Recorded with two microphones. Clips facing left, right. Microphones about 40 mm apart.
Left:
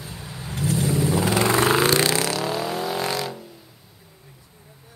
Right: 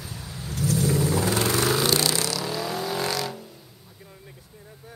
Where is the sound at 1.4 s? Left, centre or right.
Left.